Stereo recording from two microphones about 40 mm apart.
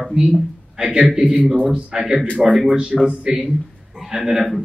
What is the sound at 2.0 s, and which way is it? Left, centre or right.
A man's voice, centre.